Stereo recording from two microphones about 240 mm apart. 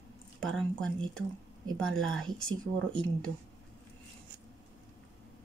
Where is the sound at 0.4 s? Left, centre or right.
Centre.